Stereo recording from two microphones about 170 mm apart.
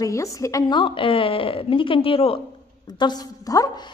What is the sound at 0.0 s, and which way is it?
A woman's voice, 20° left (ahead or behind).